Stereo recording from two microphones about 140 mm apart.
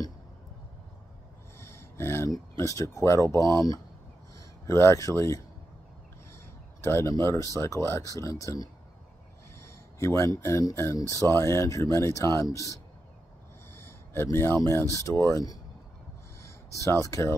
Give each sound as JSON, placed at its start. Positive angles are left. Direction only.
{"t": 1.6, "sound": "speech", "side_deg": 15}
{"t": 4.6, "sound": "speech", "side_deg": 20}
{"t": 6.8, "sound": "speech", "side_deg": 15}
{"t": 9.9, "sound": "speech", "side_deg": 20}
{"t": 13.7, "sound": "a sound", "side_deg": 20}
{"t": 15.0, "sound": "speech", "side_deg": 20}
{"t": 16.7, "sound": "speech", "side_deg": 20}